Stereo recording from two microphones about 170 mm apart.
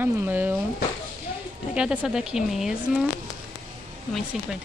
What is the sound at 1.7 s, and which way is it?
Speech, 5° right (ahead or behind).